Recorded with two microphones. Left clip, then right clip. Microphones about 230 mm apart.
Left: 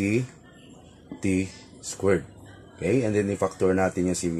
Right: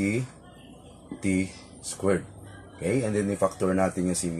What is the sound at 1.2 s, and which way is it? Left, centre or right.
Speech, left.